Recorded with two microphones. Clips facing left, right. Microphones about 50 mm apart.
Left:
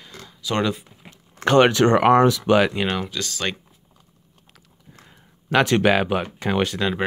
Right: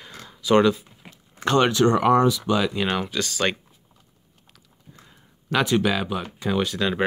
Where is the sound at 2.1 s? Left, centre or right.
Left.